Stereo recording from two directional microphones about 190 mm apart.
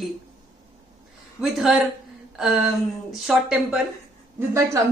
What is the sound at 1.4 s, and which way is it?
Speech, centre (ahead or behind).